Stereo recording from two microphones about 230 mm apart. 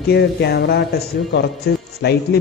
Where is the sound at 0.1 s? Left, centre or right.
Left.